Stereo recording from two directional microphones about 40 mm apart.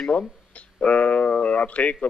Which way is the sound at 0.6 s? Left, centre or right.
Left.